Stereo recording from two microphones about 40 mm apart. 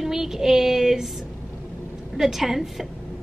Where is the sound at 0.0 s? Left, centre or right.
Centre.